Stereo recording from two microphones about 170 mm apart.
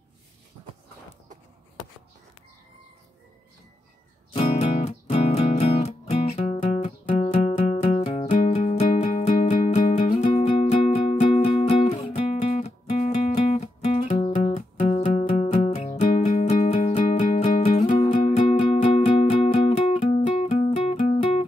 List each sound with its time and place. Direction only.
4.3 s music: 35° left (ahead or behind)
17.9 s music: 30° left (ahead or behind)